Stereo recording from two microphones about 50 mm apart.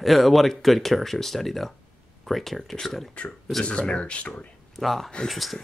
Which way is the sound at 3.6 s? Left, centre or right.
Left.